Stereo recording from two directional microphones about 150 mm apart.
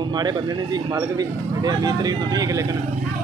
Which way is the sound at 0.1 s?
25° right (ahead or behind).